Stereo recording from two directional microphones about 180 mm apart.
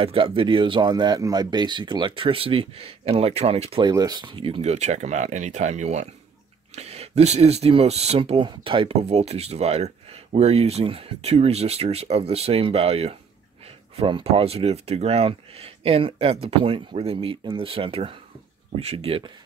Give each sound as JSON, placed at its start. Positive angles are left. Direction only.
{"t": 0.0, "sound": "speech", "side_deg": -30}
{"t": 3.8, "sound": "speech", "side_deg": -20}